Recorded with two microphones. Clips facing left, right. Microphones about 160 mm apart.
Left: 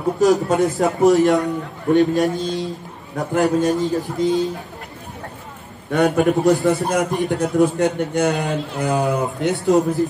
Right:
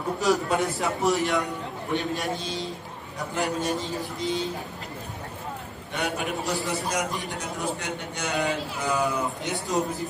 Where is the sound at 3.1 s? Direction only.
50° left (ahead or behind).